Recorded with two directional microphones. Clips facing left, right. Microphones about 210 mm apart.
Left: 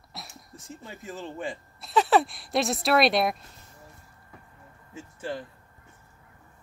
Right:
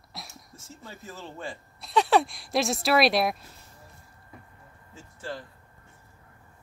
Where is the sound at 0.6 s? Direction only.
15° left (ahead or behind).